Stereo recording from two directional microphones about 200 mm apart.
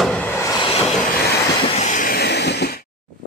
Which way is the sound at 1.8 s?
40° left (ahead or behind).